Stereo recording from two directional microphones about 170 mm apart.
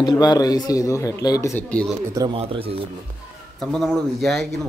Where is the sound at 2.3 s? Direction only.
35° right (ahead or behind).